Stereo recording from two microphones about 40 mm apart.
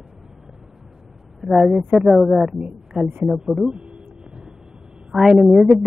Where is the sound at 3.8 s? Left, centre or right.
Right.